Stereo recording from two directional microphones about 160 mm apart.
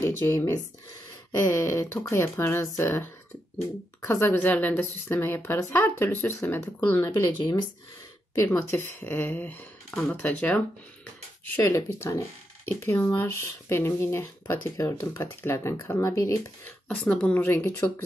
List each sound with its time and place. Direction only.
0.0 s a woman's voice: 20° left (ahead or behind)
7.1 s speech: 25° left (ahead or behind)
8.4 s a woman's voice: 15° left (ahead or behind)
16.8 s a woman's voice: 5° left (ahead or behind)